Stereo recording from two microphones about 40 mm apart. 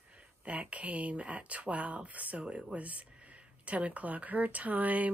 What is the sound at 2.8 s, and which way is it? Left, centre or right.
Speech, right.